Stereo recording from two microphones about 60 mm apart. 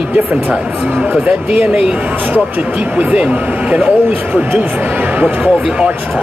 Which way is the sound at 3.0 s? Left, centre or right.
Right.